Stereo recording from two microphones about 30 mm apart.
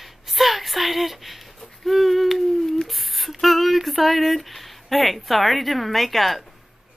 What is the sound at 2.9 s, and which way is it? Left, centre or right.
Speech, centre.